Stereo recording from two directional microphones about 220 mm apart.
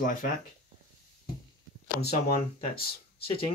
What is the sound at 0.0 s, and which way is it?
Speech, 40° left (ahead or behind).